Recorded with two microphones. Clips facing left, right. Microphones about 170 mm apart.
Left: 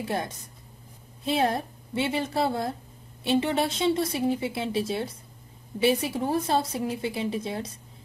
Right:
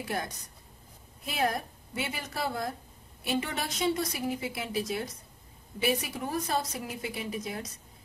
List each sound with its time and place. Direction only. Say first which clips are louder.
0.0 s a woman's voice: left 4 dB; 25° left (ahead or behind)